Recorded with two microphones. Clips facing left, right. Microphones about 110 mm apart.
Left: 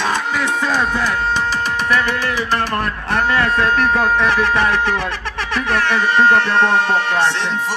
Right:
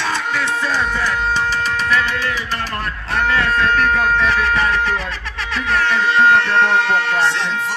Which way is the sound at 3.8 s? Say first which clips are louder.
Left 1 dB; 30° left (ahead or behind).